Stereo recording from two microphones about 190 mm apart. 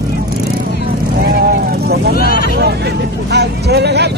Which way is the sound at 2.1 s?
50° left (ahead or behind).